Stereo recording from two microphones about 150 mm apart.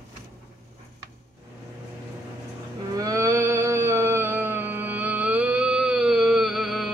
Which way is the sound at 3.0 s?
20° right (ahead or behind).